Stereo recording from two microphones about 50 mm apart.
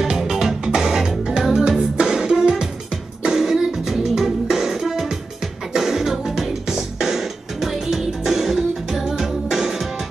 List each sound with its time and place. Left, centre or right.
0.0 s music: centre